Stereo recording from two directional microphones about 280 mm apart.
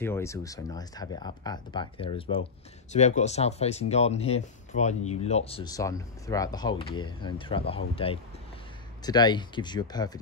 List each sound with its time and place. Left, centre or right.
0.0 s speech: centre